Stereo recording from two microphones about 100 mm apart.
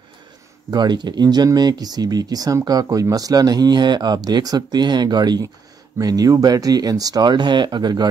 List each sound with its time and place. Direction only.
0.7 s speech: 45° right (ahead or behind)